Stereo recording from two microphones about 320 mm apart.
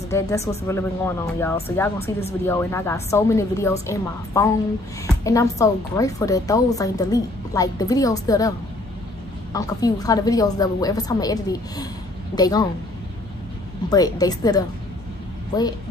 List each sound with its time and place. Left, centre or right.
0.7 s a woman's voice: centre
2.0 s speech: centre
2.4 s a woman's voice: centre
13.8 s a woman's voice: centre